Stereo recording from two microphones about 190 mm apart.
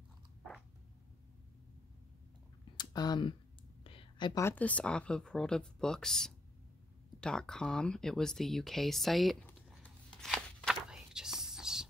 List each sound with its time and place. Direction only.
2.8 s speech: 20° left (ahead or behind)
3.8 s a sound: 25° left (ahead or behind)
4.4 s speech: 10° left (ahead or behind)
9.8 s whispering: 5° left (ahead or behind)